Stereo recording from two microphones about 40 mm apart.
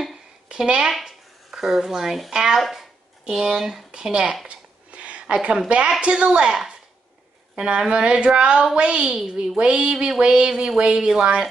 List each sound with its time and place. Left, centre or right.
0.5 s a woman's voice: right; by 2.9 s centre
3.3 s speech: centre
4.5 s a sound: right
5.2 s a woman's voice: right
7.5 s speech: right
10.5 s speech: centre